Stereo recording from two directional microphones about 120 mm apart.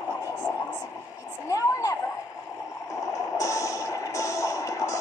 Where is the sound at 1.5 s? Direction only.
25° left (ahead or behind).